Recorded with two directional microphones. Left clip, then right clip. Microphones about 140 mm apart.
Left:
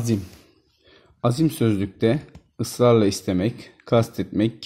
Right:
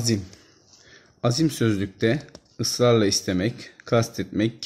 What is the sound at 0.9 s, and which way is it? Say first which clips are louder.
Speech: left 1 dB; 5° right (ahead or behind).